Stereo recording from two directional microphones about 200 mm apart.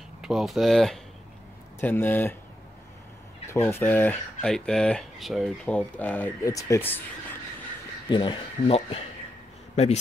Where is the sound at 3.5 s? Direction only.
15° left (ahead or behind).